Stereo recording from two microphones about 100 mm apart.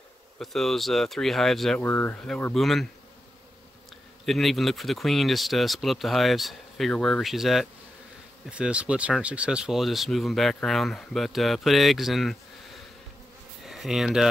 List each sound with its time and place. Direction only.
0.4 s speech: centre (ahead or behind)
1.8 s speech: 20° left (ahead or behind)
2.5 s speech: centre (ahead or behind)
4.3 s speech: centre (ahead or behind)
13.7 s speech: 5° right (ahead or behind)